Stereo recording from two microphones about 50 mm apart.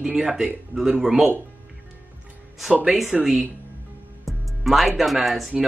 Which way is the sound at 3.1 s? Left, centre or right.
Centre.